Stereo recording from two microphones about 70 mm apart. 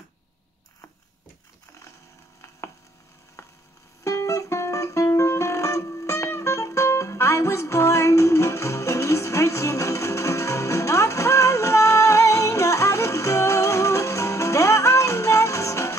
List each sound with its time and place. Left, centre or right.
3.4 s hum: left
4.0 s music: left